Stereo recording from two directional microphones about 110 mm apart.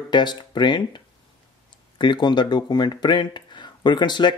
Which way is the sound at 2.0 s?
45° left (ahead or behind).